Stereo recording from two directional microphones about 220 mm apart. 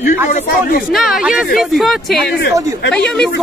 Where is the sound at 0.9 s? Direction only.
Centre (ahead or behind).